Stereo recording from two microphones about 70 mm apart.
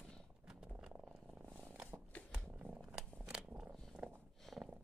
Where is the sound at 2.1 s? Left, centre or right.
Centre.